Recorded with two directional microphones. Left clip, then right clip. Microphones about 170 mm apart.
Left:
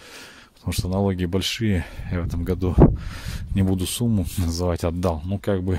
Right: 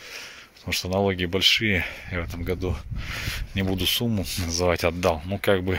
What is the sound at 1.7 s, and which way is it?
Speech, 35° left (ahead or behind).